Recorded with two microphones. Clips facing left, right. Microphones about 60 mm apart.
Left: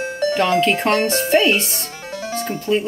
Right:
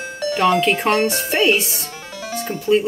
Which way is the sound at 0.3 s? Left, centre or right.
Centre.